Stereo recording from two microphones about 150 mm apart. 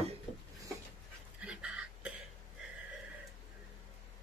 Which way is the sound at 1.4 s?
5° right (ahead or behind).